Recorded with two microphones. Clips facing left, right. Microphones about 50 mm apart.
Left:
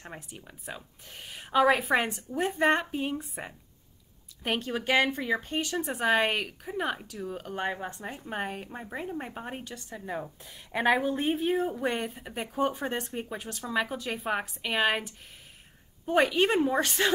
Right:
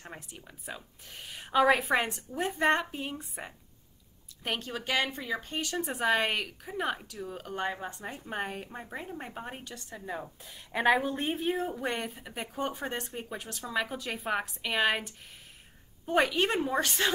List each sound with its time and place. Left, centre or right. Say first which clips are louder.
0.1 s a woman's voice: left 2 dB; centre
5.5 s a woman's voice: left 3 dB; centre